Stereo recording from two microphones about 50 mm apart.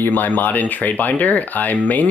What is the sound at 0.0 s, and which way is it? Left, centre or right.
Speech, left.